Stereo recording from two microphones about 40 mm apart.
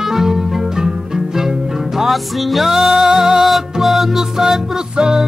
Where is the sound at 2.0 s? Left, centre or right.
Centre.